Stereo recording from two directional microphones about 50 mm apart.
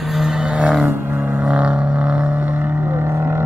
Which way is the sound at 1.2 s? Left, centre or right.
Right.